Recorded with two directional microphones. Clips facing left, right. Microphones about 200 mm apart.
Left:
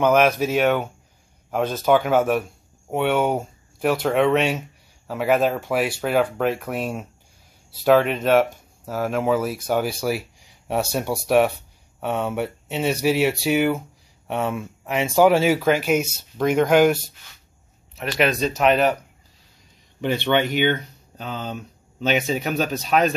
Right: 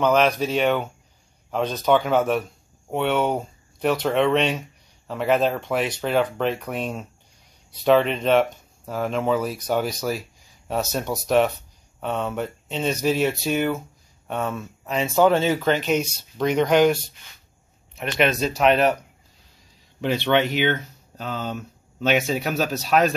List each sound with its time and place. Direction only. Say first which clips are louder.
0.0 s speech: left 2 dB; 10° left (ahead or behind)
20.0 s speech: even; centre (ahead or behind)